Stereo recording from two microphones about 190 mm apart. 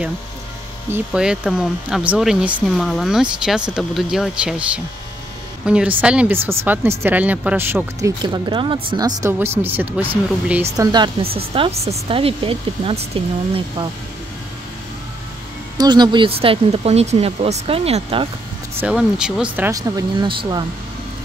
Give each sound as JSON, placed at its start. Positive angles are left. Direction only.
{"t": 0.8, "sound": "speech", "side_deg": -10}
{"t": 8.2, "sound": "speech", "side_deg": -25}
{"t": 11.3, "sound": "speech", "side_deg": -30}
{"t": 15.8, "sound": "speech", "side_deg": -25}
{"t": 18.8, "sound": "speech", "side_deg": -5}